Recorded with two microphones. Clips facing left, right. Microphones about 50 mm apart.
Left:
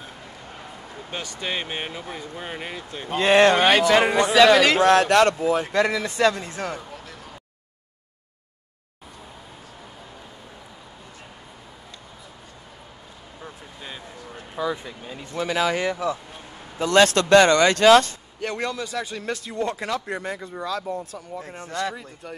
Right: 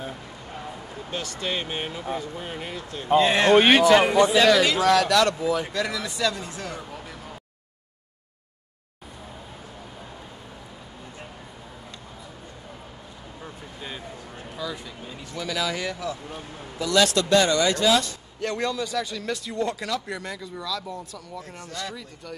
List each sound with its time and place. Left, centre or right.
1.1 s speech: left
3.2 s speech: left
4.6 s speech: left
13.4 s a sound: centre
14.5 s a sound: left
15.3 s speech: left
16.7 s speech: left
18.6 s speech: left